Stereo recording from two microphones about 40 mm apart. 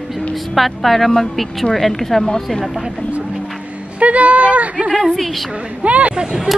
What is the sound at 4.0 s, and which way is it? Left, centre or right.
Speech, right.